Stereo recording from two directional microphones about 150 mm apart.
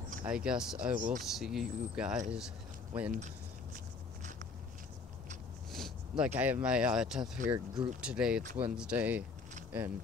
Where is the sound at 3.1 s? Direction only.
60° right (ahead or behind).